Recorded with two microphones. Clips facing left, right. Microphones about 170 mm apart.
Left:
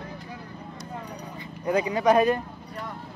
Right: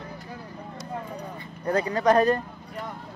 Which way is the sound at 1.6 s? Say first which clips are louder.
Even; 10° left (ahead or behind).